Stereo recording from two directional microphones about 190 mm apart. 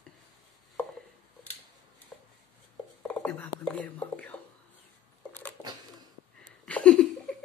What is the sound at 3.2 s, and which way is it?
Whispering, 5° left (ahead or behind).